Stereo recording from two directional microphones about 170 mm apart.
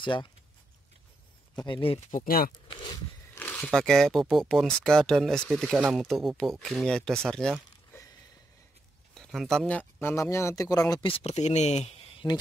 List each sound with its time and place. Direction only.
0.0 s speech: 30° left (ahead or behind)
1.6 s speech: 30° left (ahead or behind)
2.0 s speech: 55° left (ahead or behind)
2.7 s a sound: 30° left (ahead or behind)
3.3 s speech: 10° left (ahead or behind)
9.1 s speech: centre (ahead or behind); by 12.4 s 30° left (ahead or behind)